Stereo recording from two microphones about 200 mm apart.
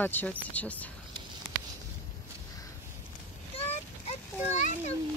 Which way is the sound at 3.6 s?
30° left (ahead or behind).